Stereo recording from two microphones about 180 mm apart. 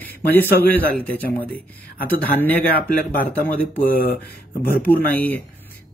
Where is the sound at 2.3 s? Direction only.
10° left (ahead or behind).